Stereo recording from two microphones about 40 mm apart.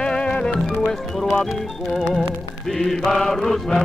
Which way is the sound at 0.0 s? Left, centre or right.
Left.